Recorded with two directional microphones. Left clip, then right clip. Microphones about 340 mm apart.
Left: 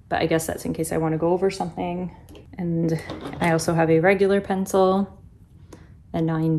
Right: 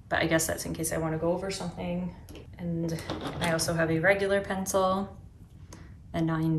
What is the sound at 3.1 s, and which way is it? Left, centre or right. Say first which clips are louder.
Speech: left 1 dB; centre.